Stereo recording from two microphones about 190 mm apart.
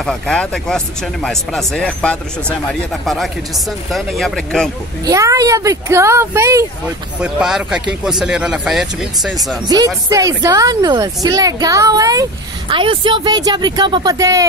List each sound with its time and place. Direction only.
0.0 s speech: 5° left (ahead or behind)
5.0 s speech: 15° right (ahead or behind)
7.2 s speech: 5° right (ahead or behind)
9.7 s a woman's voice: 20° right (ahead or behind)